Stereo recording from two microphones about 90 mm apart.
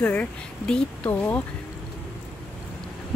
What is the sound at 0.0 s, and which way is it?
Speech, 15° left (ahead or behind).